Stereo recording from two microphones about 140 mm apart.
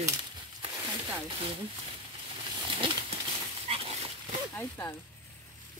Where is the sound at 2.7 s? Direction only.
40° right (ahead or behind).